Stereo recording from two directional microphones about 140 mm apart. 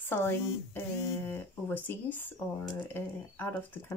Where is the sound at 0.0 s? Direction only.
15° left (ahead or behind).